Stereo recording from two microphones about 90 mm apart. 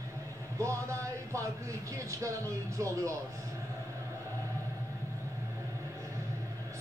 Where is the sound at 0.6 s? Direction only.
35° right (ahead or behind).